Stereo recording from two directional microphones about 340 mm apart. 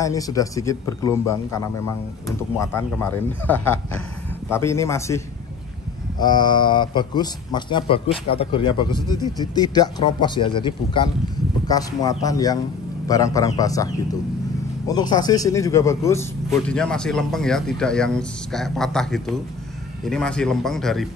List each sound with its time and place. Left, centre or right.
0.0 s a man's voice: centre
14.9 s speech: centre